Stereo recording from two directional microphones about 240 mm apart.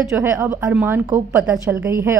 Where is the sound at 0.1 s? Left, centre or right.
Centre.